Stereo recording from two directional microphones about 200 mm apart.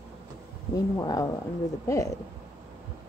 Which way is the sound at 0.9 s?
20° left (ahead or behind).